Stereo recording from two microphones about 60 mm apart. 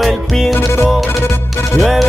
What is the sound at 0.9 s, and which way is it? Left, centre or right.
Music, centre.